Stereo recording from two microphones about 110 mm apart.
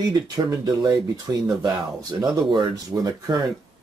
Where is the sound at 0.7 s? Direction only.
35° right (ahead or behind).